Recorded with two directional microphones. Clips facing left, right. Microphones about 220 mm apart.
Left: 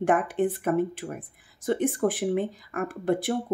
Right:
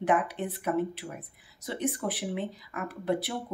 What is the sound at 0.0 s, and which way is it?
Speech, 50° left (ahead or behind).